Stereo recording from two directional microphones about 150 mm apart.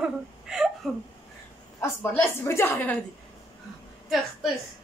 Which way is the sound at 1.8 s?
15° left (ahead or behind).